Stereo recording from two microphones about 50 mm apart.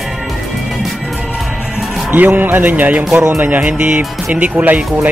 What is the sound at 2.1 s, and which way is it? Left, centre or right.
Speech, right.